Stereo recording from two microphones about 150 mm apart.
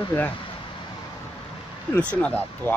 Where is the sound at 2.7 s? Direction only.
15° left (ahead or behind).